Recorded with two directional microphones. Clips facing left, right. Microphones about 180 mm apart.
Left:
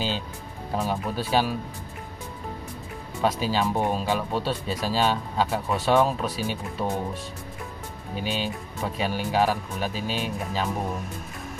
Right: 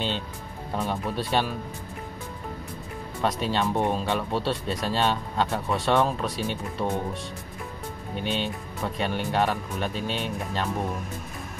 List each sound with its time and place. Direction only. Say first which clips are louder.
0.7 s speech: left 1 dB; centre (ahead or behind)
3.2 s speech: left 2 dB; centre (ahead or behind)
8.2 s speech: even; 5° left (ahead or behind)